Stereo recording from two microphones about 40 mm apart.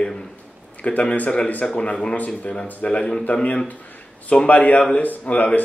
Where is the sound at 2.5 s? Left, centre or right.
Left.